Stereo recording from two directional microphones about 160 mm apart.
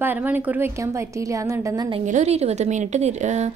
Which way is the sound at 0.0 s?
10° right (ahead or behind).